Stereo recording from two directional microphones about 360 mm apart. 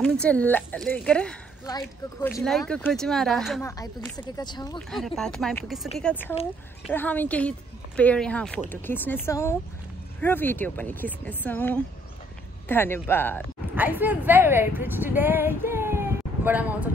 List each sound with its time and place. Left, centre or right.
0.0 s speech: centre
13.7 s speech: centre
15.1 s female singing: centre
16.4 s speech: centre